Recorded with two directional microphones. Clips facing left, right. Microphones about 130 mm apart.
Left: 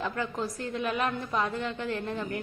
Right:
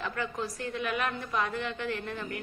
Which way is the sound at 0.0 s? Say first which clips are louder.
Left 2 dB; 30° left (ahead or behind).